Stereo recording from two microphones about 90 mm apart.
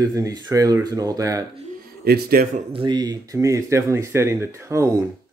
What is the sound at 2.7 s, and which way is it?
Speech, 70° right (ahead or behind).